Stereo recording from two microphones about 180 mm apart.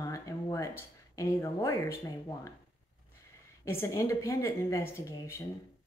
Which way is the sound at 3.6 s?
15° left (ahead or behind).